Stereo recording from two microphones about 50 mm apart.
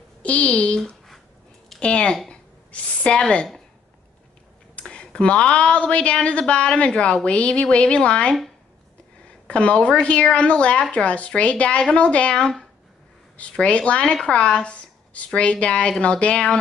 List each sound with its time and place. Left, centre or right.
0.2 s a woman's voice: left
1.8 s speech: centre
2.2 s a sound: centre
4.7 s a woman's voice: centre
9.5 s a woman's voice: left
12.4 s speech: centre
13.4 s a woman's voice: left